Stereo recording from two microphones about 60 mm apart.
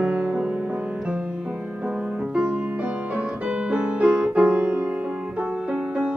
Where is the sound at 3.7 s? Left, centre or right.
Centre.